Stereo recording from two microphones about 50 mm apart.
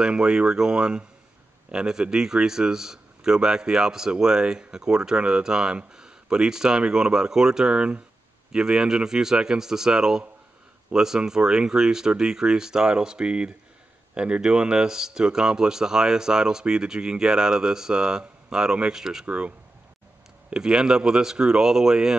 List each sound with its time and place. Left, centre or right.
0.0 s a man's voice: centre
19.2 s speech: right
20.4 s a man's voice: centre